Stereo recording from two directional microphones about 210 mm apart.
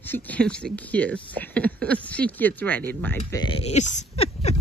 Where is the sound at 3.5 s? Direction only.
30° left (ahead or behind).